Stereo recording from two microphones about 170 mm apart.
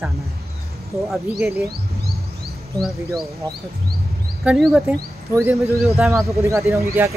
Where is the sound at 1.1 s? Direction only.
Centre (ahead or behind).